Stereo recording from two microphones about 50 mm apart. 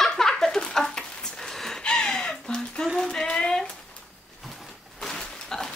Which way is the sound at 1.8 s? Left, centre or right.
Centre.